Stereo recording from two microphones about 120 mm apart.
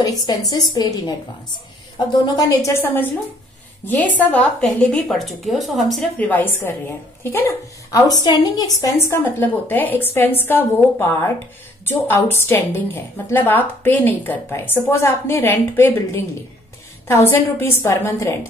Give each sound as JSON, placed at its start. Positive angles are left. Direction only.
{"t": 0.0, "sound": "a woman's voice", "side_deg": 30}
{"t": 2.0, "sound": "a woman's voice", "side_deg": 30}
{"t": 6.1, "sound": "a woman's voice", "side_deg": 15}